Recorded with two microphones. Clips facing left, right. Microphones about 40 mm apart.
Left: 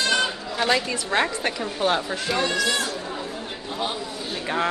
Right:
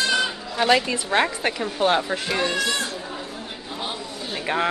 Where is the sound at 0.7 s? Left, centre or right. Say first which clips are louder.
Right 4 dB; centre.